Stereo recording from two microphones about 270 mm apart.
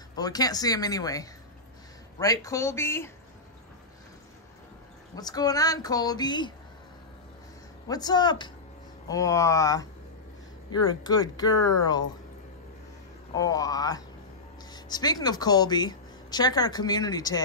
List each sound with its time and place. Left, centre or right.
0.2 s speech: centre
5.1 s speech: centre
7.9 s speech: centre
13.3 s a woman's voice: centre